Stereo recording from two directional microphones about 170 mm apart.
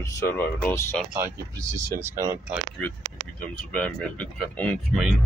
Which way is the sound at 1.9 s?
15° right (ahead or behind).